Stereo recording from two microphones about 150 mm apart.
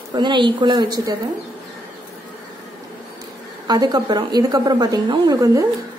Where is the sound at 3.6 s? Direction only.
25° right (ahead or behind).